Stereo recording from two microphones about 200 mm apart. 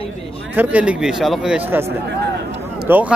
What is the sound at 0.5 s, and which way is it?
A man's voice, 10° right (ahead or behind).